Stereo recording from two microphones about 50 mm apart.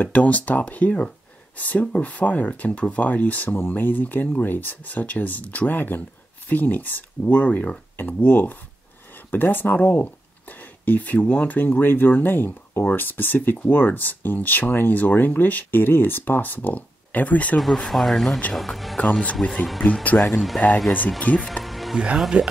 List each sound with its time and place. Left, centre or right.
0.0 s speech: left
17.6 s speech: centre
19.4 s speech: left
20.2 s speech: centre
21.2 s speech: left
21.6 s music: centre
21.9 s speech: centre